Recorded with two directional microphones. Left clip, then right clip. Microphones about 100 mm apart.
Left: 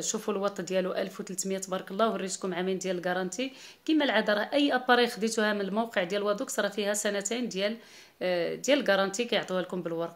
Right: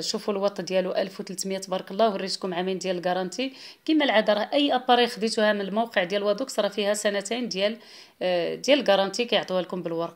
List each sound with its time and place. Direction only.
0.1 s speech: 15° right (ahead or behind)
3.8 s speech: 15° right (ahead or behind)